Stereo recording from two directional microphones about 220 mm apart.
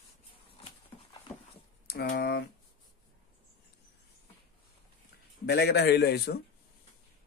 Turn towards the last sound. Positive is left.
turn(degrees=45)  # may be behind; listen again after turning